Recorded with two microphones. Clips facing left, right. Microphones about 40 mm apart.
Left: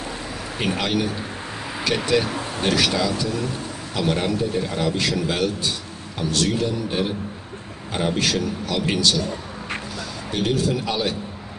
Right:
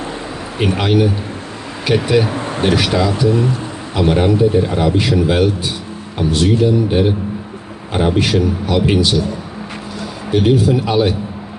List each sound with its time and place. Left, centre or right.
0.6 s a man's voice: centre
2.3 s a sound: right
2.7 s speech: right
3.9 s a man's voice: right
10.3 s a man's voice: centre